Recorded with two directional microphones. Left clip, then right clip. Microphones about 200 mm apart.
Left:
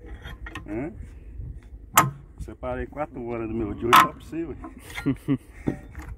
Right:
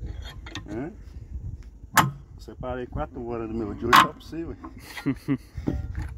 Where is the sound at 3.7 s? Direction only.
15° right (ahead or behind).